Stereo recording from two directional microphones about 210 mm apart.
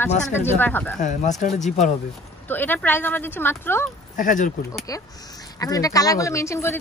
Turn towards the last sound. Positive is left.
turn(degrees=15)  # may be behind; listen again after turning